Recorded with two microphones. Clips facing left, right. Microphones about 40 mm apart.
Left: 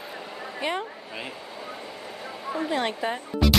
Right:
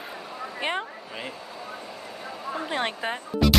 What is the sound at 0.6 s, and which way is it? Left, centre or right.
Speech, right.